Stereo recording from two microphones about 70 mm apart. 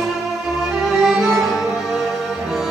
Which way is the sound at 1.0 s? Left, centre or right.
Centre.